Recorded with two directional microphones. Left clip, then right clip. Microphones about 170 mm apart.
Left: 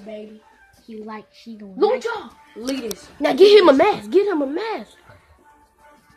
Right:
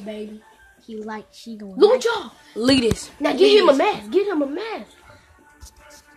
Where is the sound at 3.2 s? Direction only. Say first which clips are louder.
Left 3 dB; 60° left (ahead or behind).